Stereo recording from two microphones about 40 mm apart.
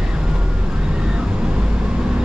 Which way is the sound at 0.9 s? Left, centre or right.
Centre.